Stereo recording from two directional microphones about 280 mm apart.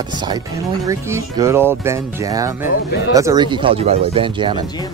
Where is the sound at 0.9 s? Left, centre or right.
Centre.